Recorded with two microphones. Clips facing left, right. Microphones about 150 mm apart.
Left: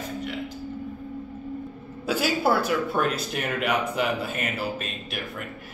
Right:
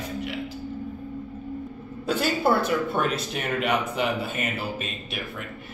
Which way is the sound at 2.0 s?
5° left (ahead or behind).